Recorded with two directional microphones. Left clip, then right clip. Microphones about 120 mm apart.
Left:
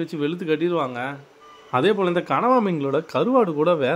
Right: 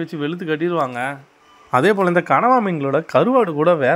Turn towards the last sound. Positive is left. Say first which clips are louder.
# right 4 dB
turn(degrees=-15)  # may be behind; listen again after turning